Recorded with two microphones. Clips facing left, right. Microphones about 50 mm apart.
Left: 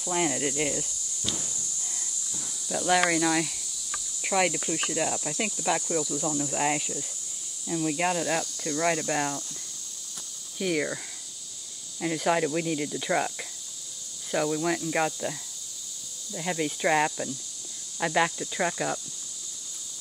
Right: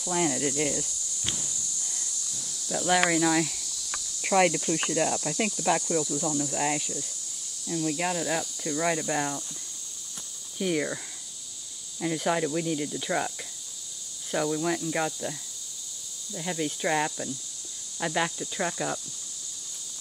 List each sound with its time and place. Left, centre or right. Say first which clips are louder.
0.0 s speech: even; centre
1.3 s snake: left 1 dB; left; by 3.0 s centre
3.1 s speech: right 1 dB; centre
10.6 s speech: even; centre
12.3 s speech: left 2 dB; centre